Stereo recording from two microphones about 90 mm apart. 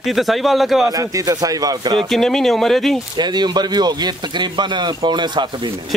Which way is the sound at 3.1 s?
55° right (ahead or behind).